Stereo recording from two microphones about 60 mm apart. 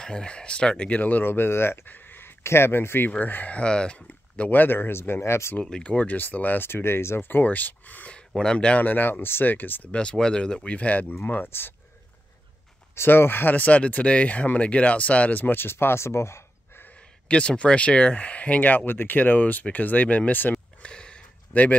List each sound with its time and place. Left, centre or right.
0.0 s speech: centre
1.2 s speech: left
4.5 s speech: left
5.6 s speech: centre
8.8 s speech: left
9.9 s speech: centre; by 11.7 s left
12.9 s speech: left
13.6 s speech: left
16.8 s speech: left
20.8 s a sound: centre